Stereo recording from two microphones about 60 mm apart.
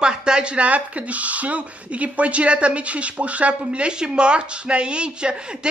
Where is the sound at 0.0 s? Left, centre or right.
Centre.